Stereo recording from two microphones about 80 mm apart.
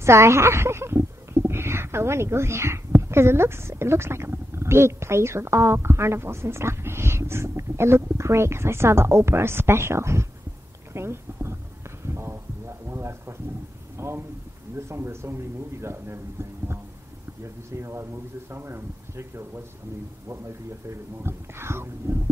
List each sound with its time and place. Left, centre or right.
0.0 s speech: right
10.9 s a sound: right
14.8 s speech: right
21.2 s speech: right